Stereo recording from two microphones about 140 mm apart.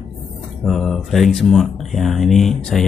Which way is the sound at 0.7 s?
Centre (ahead or behind).